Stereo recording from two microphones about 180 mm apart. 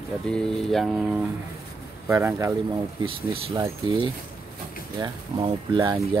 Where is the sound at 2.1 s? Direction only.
15° right (ahead or behind).